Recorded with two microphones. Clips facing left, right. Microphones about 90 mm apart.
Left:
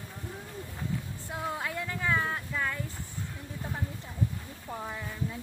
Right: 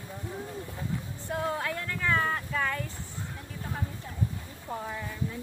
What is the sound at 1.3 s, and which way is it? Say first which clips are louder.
Music: right 3 dB; 5° left (ahead or behind).